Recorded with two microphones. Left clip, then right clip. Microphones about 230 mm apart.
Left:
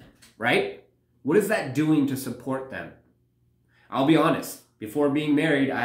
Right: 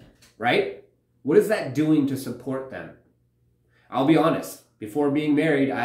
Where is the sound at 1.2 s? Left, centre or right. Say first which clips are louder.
Right 3 dB; centre.